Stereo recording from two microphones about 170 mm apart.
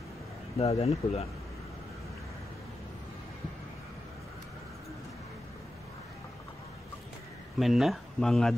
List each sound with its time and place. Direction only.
0.6 s speech: 35° left (ahead or behind)
7.5 s speech: centre (ahead or behind)